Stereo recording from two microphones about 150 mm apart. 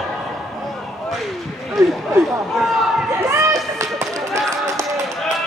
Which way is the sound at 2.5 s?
Centre (ahead or behind).